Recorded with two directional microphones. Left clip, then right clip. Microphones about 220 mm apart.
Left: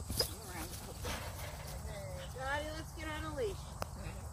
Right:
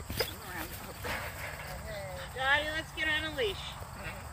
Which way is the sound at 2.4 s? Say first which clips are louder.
Right 11 dB; 10° left (ahead or behind).